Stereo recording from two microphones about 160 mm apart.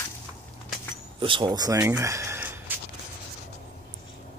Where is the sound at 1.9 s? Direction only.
20° right (ahead or behind).